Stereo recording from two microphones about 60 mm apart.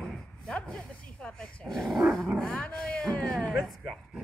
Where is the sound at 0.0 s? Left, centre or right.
Centre.